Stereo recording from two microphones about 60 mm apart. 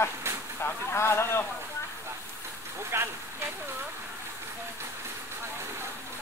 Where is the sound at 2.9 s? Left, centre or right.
Right.